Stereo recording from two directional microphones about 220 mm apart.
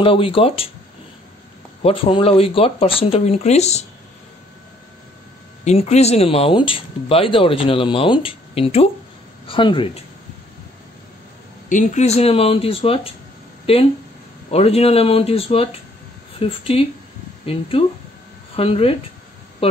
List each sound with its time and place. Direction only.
0.0 s speech: 25° left (ahead or behind)
1.8 s speech: 25° left (ahead or behind)
5.6 s speech: 30° left (ahead or behind)
11.7 s speech: 30° left (ahead or behind)